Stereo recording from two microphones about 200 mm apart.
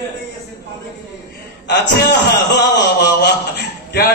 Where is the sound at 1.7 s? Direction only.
55° left (ahead or behind).